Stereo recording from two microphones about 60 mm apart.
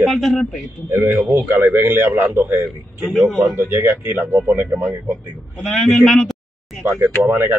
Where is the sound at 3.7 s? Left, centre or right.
Right.